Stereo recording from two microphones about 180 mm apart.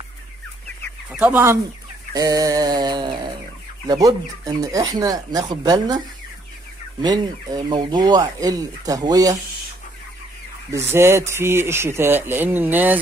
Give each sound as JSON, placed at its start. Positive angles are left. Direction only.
{"t": 1.1, "sound": "speech", "side_deg": -10}
{"t": 7.0, "sound": "speech", "side_deg": -20}
{"t": 10.7, "sound": "speech", "side_deg": -15}